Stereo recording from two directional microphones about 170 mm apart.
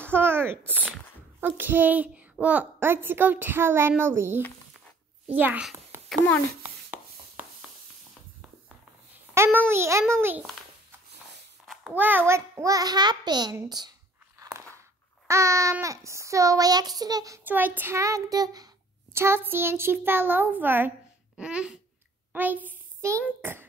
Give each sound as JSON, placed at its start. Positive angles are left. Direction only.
{"t": 0.0, "sound": "a sound", "side_deg": -10}
{"t": 1.4, "sound": "a woman's voice", "side_deg": -10}
{"t": 6.0, "sound": "a child's voice", "side_deg": 10}
{"t": 9.3, "sound": "a sound", "side_deg": -15}
{"t": 9.7, "sound": "a woman's voice", "side_deg": -15}
{"t": 11.6, "sound": "child singing", "side_deg": -5}
{"t": 15.2, "sound": "child singing", "side_deg": -20}
{"t": 19.1, "sound": "a woman's voice", "side_deg": -15}
{"t": 21.4, "sound": "babbling", "side_deg": -5}
{"t": 22.3, "sound": "a child's voice", "side_deg": -10}